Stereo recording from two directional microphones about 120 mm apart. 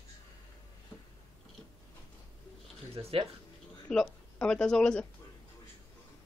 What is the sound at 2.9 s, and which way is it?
Speech, 55° right (ahead or behind).